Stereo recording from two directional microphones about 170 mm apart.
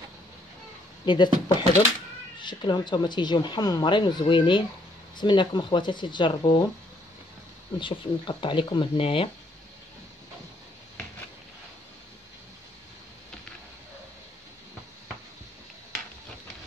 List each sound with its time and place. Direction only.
1.0 s speech: 25° left (ahead or behind)
7.8 s speech: 30° left (ahead or behind)